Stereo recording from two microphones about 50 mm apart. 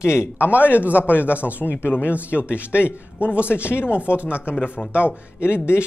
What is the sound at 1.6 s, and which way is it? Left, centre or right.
Speech, left.